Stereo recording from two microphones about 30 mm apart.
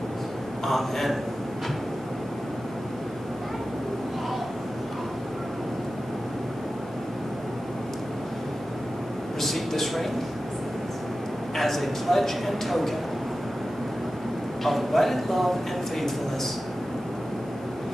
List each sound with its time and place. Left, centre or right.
0.7 s a man's voice: centre
9.4 s a sound: centre
11.5 s a man's voice: centre
14.6 s a man's voice: centre